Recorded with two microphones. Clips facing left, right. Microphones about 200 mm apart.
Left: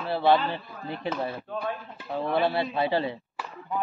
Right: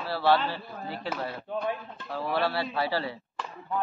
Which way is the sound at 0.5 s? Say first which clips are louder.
Left 2 dB; 20° left (ahead or behind).